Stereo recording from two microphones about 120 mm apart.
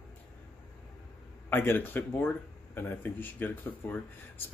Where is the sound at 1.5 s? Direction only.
15° left (ahead or behind).